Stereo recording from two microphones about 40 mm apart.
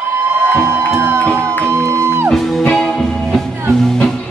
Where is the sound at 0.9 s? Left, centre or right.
Right.